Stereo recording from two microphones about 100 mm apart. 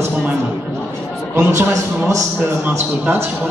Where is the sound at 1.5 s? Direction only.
35° right (ahead or behind).